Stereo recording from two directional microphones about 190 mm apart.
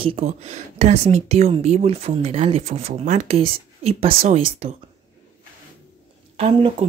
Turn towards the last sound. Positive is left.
turn(degrees=-35)  # may be behind; listen again after turning